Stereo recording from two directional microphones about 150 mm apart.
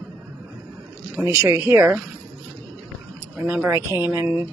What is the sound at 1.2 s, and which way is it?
Speech, 20° right (ahead or behind).